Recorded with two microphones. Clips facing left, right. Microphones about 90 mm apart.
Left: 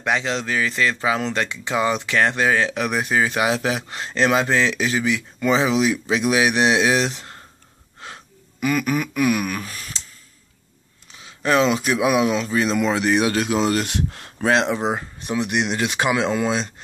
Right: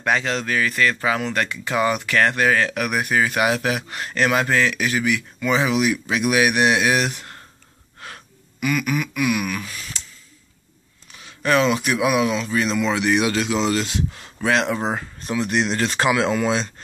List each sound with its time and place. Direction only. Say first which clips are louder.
0.0 s speech: right 1 dB; 20° left (ahead or behind)
8.0 s a sound: even; 30° left (ahead or behind)
11.1 s speech: even; 25° left (ahead or behind); by 13.8 s 40° left (ahead or behind)
13.8 s speech: even; 65° left (ahead or behind)
14.4 s speech: left 1 dB; 25° left (ahead or behind); by 16.1 s 10° left (ahead or behind)